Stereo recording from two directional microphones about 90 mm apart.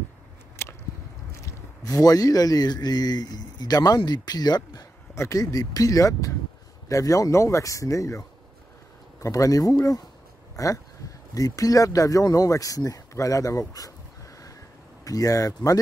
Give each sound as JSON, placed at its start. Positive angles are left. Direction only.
{"t": 0.6, "sound": "biting", "side_deg": 30}
{"t": 1.4, "sound": "speech", "side_deg": 40}
{"t": 5.1, "sound": "speech", "side_deg": 35}
{"t": 15.0, "sound": "speech", "side_deg": 40}